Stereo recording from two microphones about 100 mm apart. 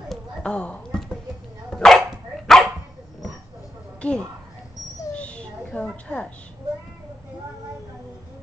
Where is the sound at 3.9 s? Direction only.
10° left (ahead or behind).